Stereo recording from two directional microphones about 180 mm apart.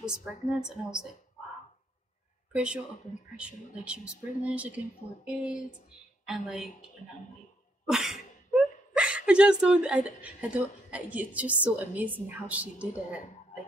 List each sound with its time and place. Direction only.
0.0 s a woman's voice: 5° right (ahead or behind)
2.5 s a woman's voice: 5° right (ahead or behind)
7.8 s a sound: centre (ahead or behind)
8.9 s a woman's voice: 5° right (ahead or behind)